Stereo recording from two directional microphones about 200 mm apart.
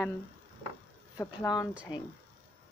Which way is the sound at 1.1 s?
15° left (ahead or behind).